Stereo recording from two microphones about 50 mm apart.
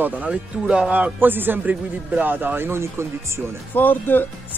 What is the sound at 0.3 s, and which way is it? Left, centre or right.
Speech, centre.